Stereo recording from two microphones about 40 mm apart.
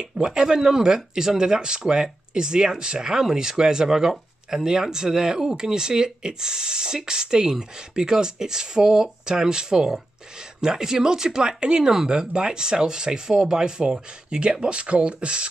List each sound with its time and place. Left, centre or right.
0.0 s speech: centre